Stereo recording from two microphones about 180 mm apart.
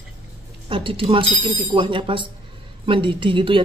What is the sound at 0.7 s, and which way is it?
A woman's voice, 30° right (ahead or behind).